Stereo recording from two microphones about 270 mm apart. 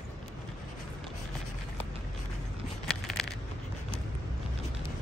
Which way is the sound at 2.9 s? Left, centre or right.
Centre.